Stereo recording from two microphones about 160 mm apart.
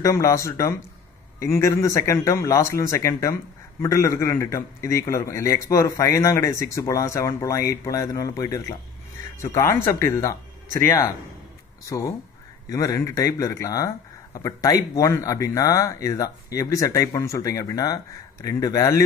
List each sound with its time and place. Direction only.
0.0 s speech: 20° left (ahead or behind)
11.8 s speech: 20° left (ahead or behind)